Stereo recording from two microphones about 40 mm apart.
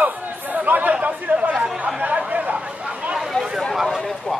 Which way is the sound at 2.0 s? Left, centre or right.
Right.